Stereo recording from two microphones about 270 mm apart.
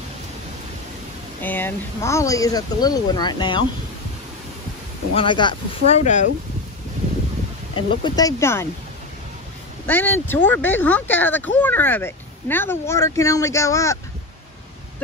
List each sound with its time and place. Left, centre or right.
1.4 s speech: centre
5.1 s speech: centre
7.7 s speech: centre
9.8 s speech: centre